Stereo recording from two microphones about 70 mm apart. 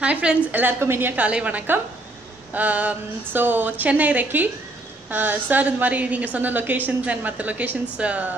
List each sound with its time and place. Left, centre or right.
0.0 s a woman's voice: centre
1.2 s a woman's voice: right